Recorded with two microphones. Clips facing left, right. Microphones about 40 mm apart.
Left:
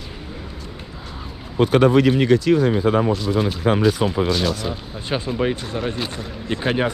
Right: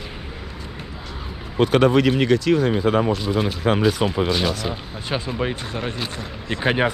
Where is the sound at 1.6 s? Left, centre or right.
Right.